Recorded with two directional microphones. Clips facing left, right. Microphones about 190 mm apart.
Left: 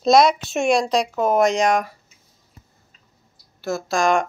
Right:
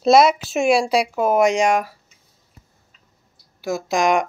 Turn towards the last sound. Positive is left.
turn(degrees=-15)  # may be behind; listen again after turning